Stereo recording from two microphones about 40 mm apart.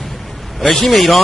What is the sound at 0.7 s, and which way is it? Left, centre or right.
Speech, centre.